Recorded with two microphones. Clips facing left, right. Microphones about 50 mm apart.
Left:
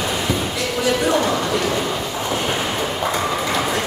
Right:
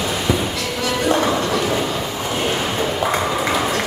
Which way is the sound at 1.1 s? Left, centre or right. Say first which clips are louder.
Right 1 dB; centre.